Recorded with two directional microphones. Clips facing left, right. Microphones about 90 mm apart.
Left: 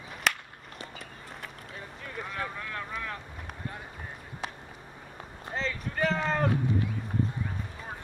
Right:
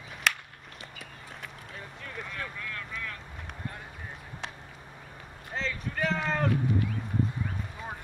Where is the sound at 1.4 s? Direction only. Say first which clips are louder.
Even; 5° left (ahead or behind).